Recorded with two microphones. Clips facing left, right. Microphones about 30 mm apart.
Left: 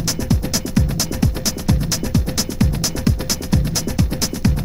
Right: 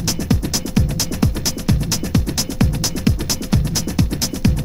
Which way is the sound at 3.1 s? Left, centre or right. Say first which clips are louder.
Right 1 dB; centre.